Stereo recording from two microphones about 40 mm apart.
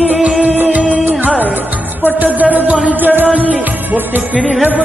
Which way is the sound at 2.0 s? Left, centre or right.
Right.